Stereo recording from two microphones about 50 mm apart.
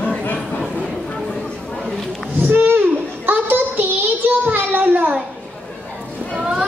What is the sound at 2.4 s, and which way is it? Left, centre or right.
Child singing, right.